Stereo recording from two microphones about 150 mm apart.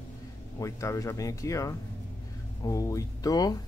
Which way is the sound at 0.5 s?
20° left (ahead or behind).